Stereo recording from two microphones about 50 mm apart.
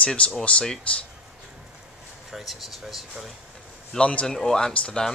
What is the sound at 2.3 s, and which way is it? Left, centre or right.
Speech, centre.